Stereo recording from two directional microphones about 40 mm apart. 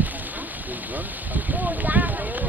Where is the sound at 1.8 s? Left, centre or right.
Right.